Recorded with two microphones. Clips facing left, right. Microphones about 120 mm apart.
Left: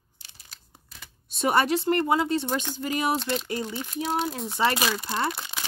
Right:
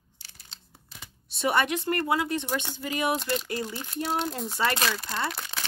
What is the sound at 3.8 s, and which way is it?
Speech, centre (ahead or behind).